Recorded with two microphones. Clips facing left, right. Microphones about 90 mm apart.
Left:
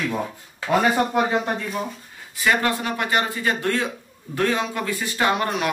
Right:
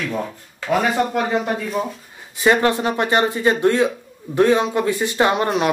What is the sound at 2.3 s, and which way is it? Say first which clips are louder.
Speech: right 5 dB; 25° right (ahead or behind).